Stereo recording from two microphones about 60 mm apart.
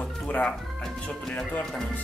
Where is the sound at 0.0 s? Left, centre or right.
Left.